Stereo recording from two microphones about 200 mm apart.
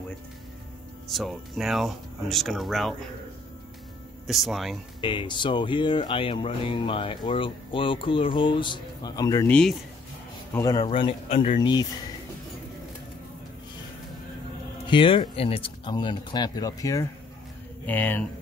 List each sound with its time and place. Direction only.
1.1 s speech: centre (ahead or behind)
4.3 s speech: centre (ahead or behind)
5.0 s speech: 25° left (ahead or behind)
9.5 s speech: 5° left (ahead or behind)
10.5 s speech: 20° left (ahead or behind)
14.9 s speech: 25° left (ahead or behind); by 18.2 s 10° left (ahead or behind)